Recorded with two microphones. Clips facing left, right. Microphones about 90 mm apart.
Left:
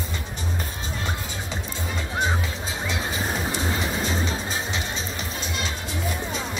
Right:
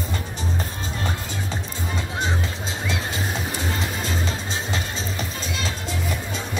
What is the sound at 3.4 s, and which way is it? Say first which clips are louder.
Music: left 1 dB; 35° left (ahead or behind).